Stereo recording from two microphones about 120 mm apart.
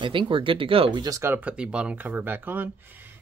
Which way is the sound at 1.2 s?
15° right (ahead or behind).